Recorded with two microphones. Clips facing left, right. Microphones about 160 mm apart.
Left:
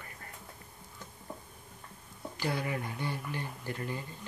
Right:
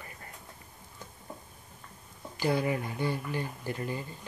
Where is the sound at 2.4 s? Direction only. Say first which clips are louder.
Right 6 dB; 20° right (ahead or behind).